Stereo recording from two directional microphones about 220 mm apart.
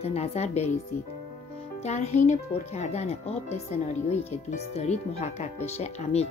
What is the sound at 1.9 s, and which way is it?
Speech, 30° left (ahead or behind).